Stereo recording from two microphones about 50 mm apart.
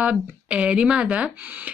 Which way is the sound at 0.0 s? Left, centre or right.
Right.